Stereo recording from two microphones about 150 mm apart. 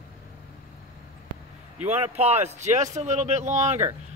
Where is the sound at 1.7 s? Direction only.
45° right (ahead or behind).